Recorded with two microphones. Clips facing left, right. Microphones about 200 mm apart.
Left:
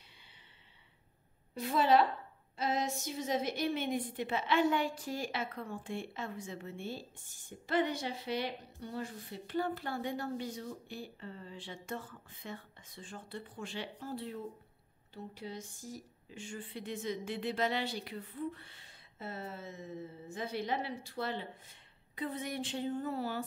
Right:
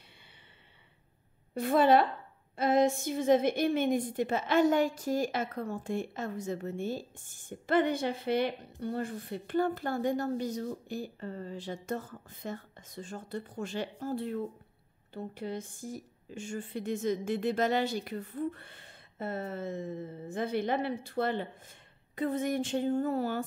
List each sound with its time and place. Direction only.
1.5 s a woman's voice: 55° right (ahead or behind)